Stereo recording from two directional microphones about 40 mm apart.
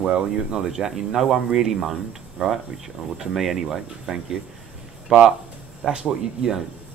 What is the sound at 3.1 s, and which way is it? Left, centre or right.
Speech, centre.